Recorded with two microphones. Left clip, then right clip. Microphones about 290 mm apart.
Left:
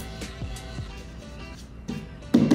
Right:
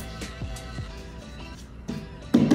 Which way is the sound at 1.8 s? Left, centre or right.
Centre.